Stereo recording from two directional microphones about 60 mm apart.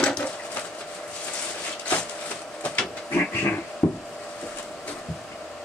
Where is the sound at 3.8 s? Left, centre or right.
Left.